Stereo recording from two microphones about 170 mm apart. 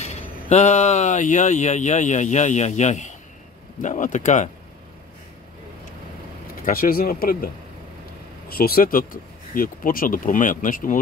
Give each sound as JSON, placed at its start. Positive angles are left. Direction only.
{"t": 0.0, "sound": "speech", "side_deg": 40}
{"t": 6.6, "sound": "speech", "side_deg": 55}